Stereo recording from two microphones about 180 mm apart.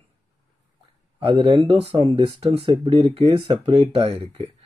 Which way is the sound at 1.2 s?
25° right (ahead or behind).